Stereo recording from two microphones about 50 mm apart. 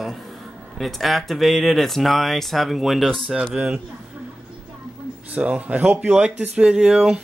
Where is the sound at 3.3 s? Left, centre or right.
Centre.